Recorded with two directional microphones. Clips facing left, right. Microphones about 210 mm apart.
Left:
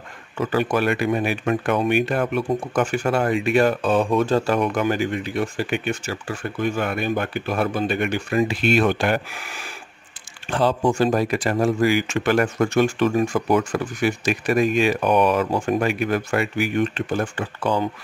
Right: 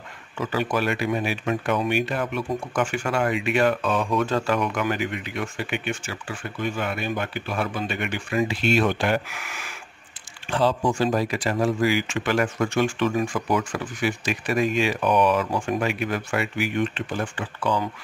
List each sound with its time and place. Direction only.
0.4 s speech: 50° left (ahead or behind)
9.3 s speech: 30° left (ahead or behind)
10.5 s speech: 55° left (ahead or behind)